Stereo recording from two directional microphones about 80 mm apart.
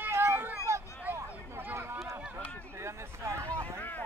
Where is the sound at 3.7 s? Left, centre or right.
Left.